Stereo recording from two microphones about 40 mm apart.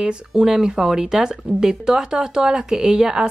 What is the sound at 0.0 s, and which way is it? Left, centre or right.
Speech, centre.